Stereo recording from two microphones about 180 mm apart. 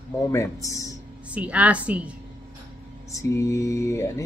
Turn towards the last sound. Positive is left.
turn(degrees=15)  # may be behind; listen again after turning